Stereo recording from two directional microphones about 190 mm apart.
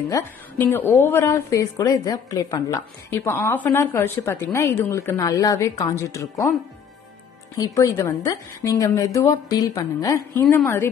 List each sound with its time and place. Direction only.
0.1 s a woman's voice: 10° left (ahead or behind)
7.5 s a woman's voice: 20° left (ahead or behind)